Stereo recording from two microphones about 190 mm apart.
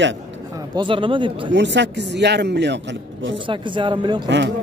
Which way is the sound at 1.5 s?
70° right (ahead or behind).